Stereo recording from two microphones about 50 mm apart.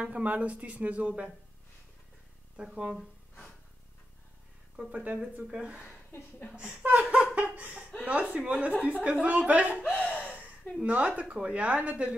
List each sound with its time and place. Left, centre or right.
0.0 s speech: right
2.5 s speech: centre
4.9 s speech: right
5.8 s a woman's voice: left
6.5 s speech: right
7.3 s laughter: right
8.0 s speech: right
9.9 s a sound: left
10.8 s speech: right